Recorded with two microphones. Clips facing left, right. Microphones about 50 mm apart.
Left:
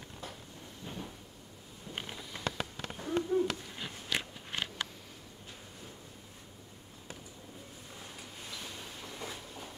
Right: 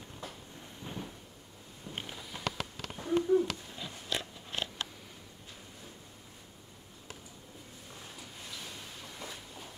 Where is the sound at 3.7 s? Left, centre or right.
Left.